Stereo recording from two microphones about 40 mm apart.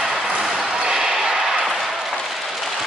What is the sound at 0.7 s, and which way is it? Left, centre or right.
Basketball bounce, right.